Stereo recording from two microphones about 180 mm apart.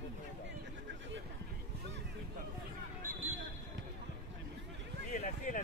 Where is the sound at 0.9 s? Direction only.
80° right.